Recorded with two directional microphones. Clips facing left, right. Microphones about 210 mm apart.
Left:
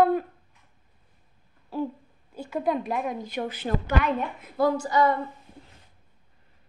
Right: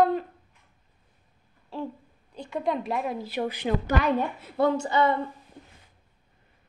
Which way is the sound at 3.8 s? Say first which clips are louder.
Right 1 dB; 35° right (ahead or behind).